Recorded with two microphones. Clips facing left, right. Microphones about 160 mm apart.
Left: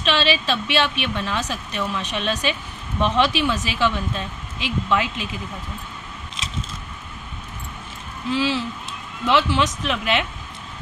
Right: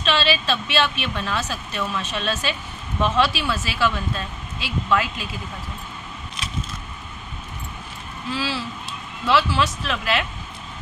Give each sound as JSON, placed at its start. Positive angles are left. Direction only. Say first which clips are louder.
{"t": 0.0, "sound": "speech", "louder": "left 1 dB", "side_deg": 15}
{"t": 8.3, "sound": "speech", "louder": "left 5 dB", "side_deg": 15}